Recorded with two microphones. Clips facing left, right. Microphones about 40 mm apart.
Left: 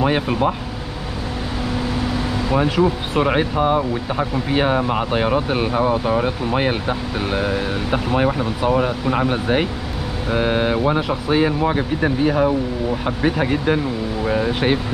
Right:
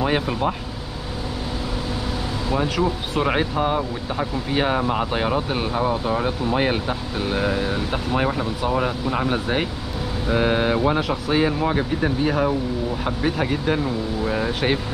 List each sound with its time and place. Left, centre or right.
0.0 s speech: centre
2.5 s speech: centre